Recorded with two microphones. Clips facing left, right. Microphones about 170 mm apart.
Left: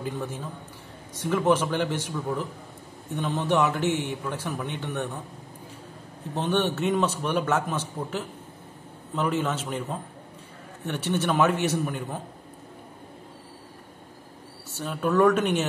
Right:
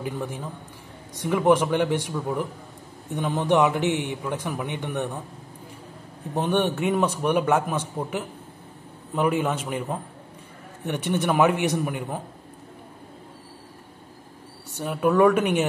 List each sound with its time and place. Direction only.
0.0 s a man's voice: 15° right (ahead or behind)
6.3 s a man's voice: 10° right (ahead or behind)
14.8 s a man's voice: 15° right (ahead or behind)